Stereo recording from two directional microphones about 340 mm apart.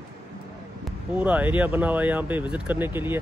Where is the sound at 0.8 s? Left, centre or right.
Centre.